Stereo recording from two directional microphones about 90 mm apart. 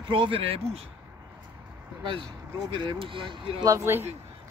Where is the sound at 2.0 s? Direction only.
65° right (ahead or behind).